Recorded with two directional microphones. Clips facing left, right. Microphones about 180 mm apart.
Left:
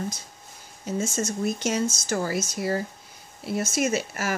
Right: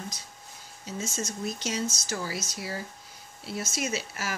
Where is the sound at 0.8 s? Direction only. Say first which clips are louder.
Left 7 dB; 50° left (ahead or behind).